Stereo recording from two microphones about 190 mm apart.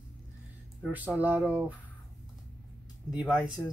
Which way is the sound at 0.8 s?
10° right (ahead or behind).